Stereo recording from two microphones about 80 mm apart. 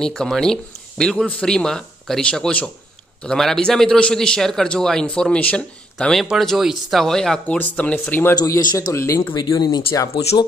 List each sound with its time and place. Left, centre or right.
0.0 s a man's voice: centre
6.4 s speech: centre
7.4 s speech: centre
8.9 s speech: left
9.3 s speech: left